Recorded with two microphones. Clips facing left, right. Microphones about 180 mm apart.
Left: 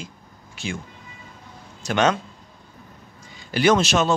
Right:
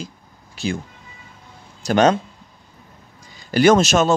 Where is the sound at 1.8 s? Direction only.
35° right (ahead or behind).